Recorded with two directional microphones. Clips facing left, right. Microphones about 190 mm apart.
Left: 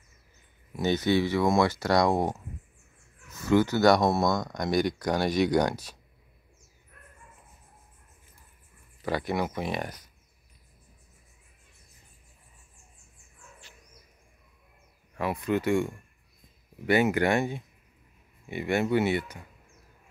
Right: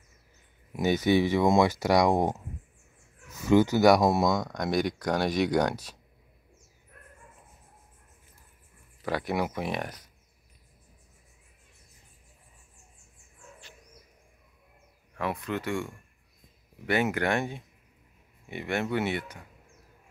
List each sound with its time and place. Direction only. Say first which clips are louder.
0.7 s speech: right 1 dB; 15° right (ahead or behind)
3.3 s speech: right 1 dB; 15° right (ahead or behind)
4.5 s speech: left 1 dB; centre (ahead or behind)
9.0 s speech: even; centre (ahead or behind)
15.1 s speech: left 4 dB; 10° left (ahead or behind)